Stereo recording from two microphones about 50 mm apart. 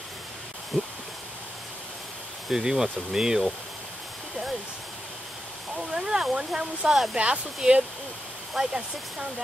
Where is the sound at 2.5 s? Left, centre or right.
Centre.